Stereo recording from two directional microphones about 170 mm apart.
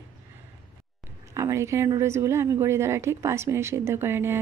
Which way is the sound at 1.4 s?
15° right (ahead or behind).